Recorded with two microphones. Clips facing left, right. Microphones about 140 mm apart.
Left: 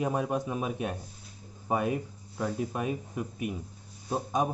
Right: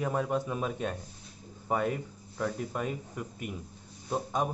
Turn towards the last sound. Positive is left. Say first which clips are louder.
# left 2 dB
turn(degrees=15)  # may be behind; listen again after turning